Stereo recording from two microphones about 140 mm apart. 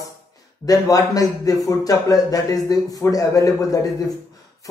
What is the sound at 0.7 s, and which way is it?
A man's voice, 25° left (ahead or behind).